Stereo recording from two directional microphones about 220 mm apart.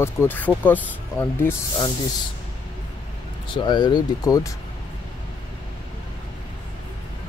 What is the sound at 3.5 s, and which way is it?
Speech, 20° left (ahead or behind).